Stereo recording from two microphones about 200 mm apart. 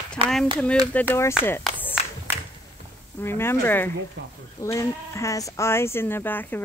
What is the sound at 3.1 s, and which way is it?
Speech, 10° left (ahead or behind).